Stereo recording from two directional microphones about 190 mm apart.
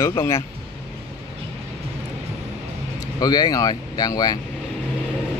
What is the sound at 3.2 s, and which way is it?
Speech, 20° left (ahead or behind).